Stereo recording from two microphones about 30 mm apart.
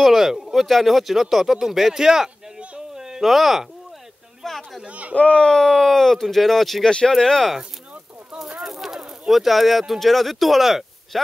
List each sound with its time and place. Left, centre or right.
0.1 s speech: centre
0.7 s speech: centre
3.2 s speech: centre
4.5 s a sound: centre
4.8 s speech: right
5.1 s speech: left
5.5 s speech: centre
7.2 s speech: centre
8.6 s speech: centre